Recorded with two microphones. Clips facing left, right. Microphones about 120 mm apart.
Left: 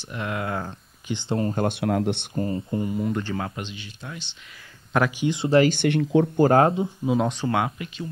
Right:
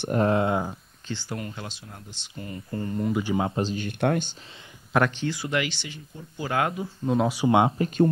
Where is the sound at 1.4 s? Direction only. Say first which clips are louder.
Left 13 dB; 45° left (ahead or behind); by 2.2 s 80° left.